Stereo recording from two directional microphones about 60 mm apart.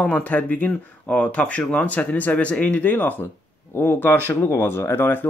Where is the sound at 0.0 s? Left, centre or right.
Left.